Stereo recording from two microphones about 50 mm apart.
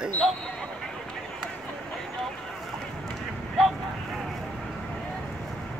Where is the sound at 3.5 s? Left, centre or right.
Centre.